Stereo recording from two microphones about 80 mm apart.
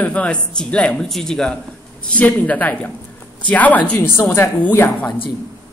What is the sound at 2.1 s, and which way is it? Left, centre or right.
A man's voice, centre.